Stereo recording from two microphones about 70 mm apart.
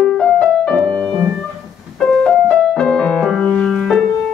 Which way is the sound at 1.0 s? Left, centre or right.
Right.